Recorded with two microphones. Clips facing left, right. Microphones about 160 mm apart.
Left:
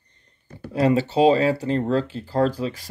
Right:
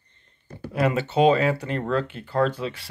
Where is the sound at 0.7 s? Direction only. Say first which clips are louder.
Left 3 dB; 35° left (ahead or behind).